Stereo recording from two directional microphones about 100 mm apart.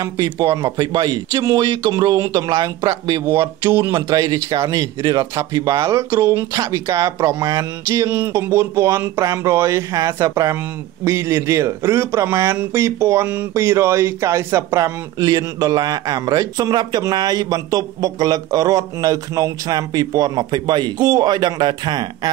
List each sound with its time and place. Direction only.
0.0 s speech: 35° right (ahead or behind)
3.3 s speech: 25° right (ahead or behind)
3.9 s speech: 40° right (ahead or behind); by 6.4 s 20° right (ahead or behind)
6.5 s speech: 35° right (ahead or behind)
7.3 s speech: 40° right (ahead or behind)
8.1 s speech: 25° right (ahead or behind); by 22.3 s 45° right (ahead or behind)